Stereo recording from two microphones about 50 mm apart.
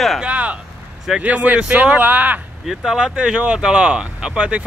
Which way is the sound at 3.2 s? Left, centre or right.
Right.